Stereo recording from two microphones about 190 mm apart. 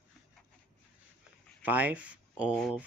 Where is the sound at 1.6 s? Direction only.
10° right (ahead or behind).